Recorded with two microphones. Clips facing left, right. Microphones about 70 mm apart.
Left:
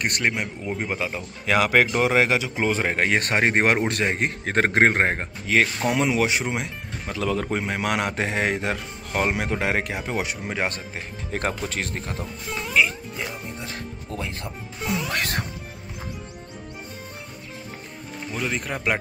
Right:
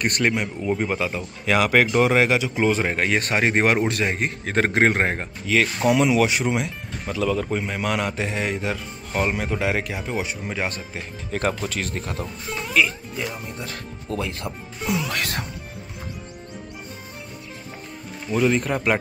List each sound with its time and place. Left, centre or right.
0.0 s speech: centre
2.8 s a man's voice: left
7.5 s a man's voice: left
9.3 s a man's voice: left
10.4 s speech: left
12.1 s speech: centre
14.1 s speech: centre
14.8 s speech: centre
15.0 s a man's voice: left
18.3 s speech: centre